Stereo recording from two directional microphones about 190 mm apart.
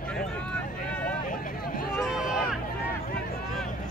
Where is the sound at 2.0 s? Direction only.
Centre (ahead or behind).